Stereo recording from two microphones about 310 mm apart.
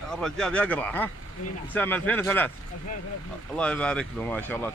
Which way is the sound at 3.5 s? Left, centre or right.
Centre.